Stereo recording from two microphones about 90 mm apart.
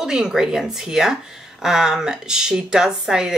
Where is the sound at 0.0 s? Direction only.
5° right (ahead or behind).